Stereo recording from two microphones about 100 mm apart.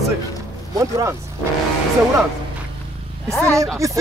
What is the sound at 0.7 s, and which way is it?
Speech, 35° right (ahead or behind).